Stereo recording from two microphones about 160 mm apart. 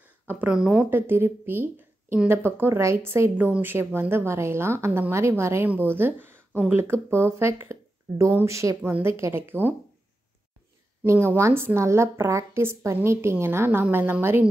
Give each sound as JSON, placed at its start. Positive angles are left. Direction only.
{"t": 0.3, "sound": "speech", "side_deg": -10}
{"t": 11.1, "sound": "speech", "side_deg": -15}